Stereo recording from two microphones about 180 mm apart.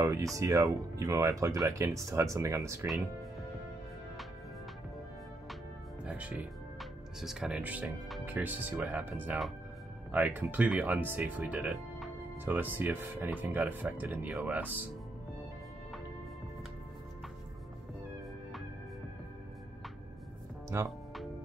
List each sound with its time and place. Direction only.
0.0 s speech: 20° right (ahead or behind)
6.0 s speech: 5° right (ahead or behind)
20.7 s speech: 15° right (ahead or behind)